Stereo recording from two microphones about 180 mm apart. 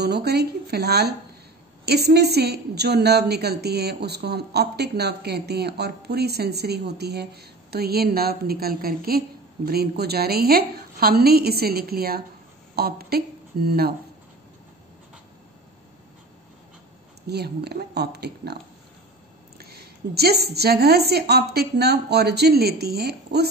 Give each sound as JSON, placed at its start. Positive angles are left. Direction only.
{"t": 0.0, "sound": "a woman's voice", "side_deg": -65}
{"t": 17.3, "sound": "a woman's voice", "side_deg": -65}
{"t": 19.6, "sound": "a woman's voice", "side_deg": -60}